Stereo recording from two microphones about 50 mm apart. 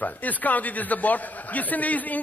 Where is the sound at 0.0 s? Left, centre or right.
Left.